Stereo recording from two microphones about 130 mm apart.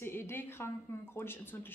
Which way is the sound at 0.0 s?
20° left (ahead or behind).